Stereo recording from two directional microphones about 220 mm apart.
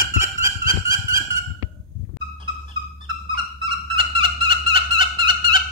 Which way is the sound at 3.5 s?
25° right (ahead or behind).